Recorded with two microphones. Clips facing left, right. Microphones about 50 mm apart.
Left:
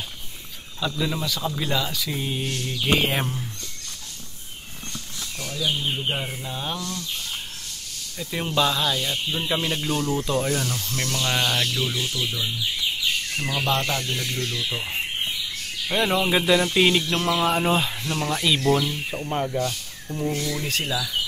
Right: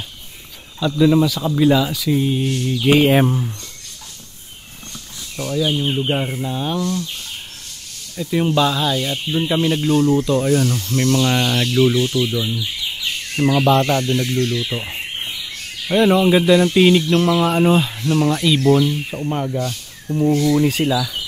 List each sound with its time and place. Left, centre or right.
0.7 s speech: centre
5.4 s speech: right
6.5 s speech: centre
8.2 s speech: centre
11.7 s speech: right
14.1 s speech: right
15.9 s speech: centre